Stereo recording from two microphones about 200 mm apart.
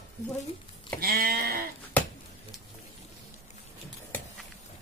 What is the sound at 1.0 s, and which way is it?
Speech, 50° right (ahead or behind).